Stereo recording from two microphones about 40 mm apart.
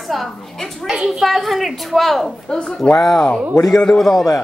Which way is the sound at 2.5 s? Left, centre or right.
Left.